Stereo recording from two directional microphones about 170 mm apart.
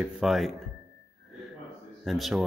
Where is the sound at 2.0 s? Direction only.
Centre (ahead or behind).